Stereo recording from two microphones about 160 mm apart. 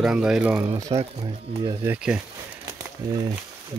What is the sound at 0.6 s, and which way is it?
Speech, 20° right (ahead or behind).